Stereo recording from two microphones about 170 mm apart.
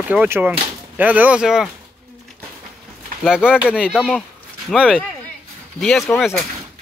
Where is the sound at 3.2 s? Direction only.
5° right (ahead or behind).